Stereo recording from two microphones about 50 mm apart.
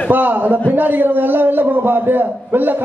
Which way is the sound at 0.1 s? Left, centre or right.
Right.